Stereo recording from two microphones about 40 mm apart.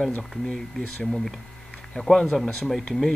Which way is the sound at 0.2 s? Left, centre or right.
Centre.